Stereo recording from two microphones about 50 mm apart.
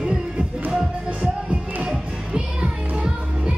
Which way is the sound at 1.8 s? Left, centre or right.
Centre.